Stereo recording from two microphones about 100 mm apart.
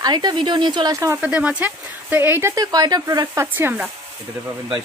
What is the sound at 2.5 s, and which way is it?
Speech, 40° right (ahead or behind).